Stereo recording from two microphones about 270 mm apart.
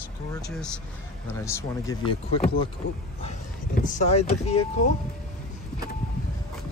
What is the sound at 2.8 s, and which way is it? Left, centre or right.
Speech, left.